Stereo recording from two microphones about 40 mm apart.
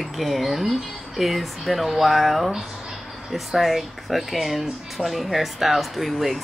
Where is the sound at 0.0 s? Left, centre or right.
Centre.